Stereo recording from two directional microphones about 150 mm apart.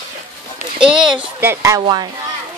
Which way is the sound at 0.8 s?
5° right (ahead or behind).